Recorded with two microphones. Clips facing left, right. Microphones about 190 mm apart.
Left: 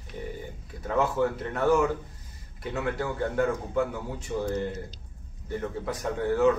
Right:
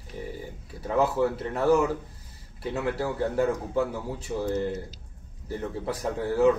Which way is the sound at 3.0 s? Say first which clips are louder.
Right 1 dB; 30° right (ahead or behind).